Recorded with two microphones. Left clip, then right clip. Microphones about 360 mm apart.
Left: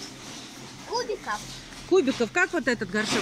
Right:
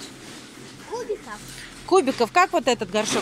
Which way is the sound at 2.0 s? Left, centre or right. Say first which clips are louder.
Right 5 dB; centre.